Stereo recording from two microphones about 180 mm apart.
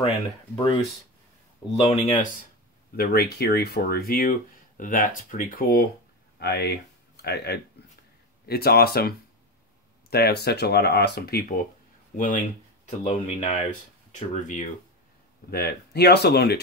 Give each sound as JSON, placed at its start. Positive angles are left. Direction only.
{"t": 1.8, "sound": "speech", "side_deg": 35}
{"t": 3.0, "sound": "speech", "side_deg": 65}
{"t": 6.4, "sound": "speech", "side_deg": 65}
{"t": 12.2, "sound": "speech", "side_deg": 45}
{"t": 15.5, "sound": "speech", "side_deg": 65}